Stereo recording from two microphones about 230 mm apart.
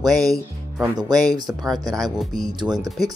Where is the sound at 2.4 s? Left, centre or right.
Centre.